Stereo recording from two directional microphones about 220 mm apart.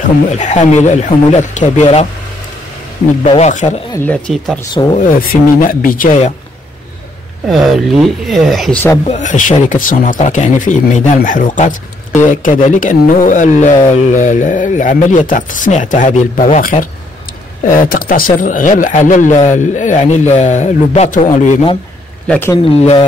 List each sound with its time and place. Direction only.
0.3 s speech: 30° left (ahead or behind)
3.3 s speech: 30° left (ahead or behind)
3.9 s speech: 5° left (ahead or behind)
4.9 s speech: 40° left (ahead or behind)
7.4 s speech: centre (ahead or behind)
8.8 s speech: 20° left (ahead or behind)
9.1 s speech: 35° left (ahead or behind)
22.3 s speech: 10° left (ahead or behind)
22.8 s speech: 30° left (ahead or behind)